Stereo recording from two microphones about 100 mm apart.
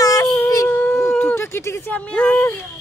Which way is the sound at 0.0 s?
35° left (ahead or behind).